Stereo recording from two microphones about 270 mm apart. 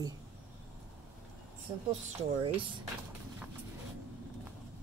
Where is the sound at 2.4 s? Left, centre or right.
Centre.